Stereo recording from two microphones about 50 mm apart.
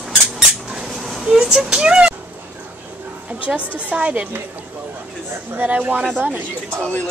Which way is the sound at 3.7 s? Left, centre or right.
Right.